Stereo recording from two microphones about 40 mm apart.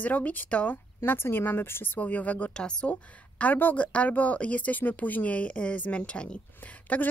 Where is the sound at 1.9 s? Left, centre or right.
Left.